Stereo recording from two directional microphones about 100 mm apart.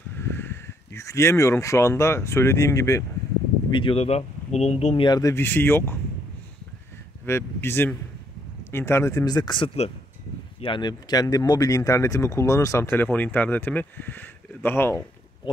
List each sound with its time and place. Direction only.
0.2 s speech: 25° left (ahead or behind)
3.7 s speech: 70° left (ahead or behind); by 5.0 s 90° left
5.2 s speech: 25° left (ahead or behind)
7.2 s speech: 25° left (ahead or behind)
9.2 s speech: 45° left (ahead or behind); by 15.0 s 20° left (ahead or behind)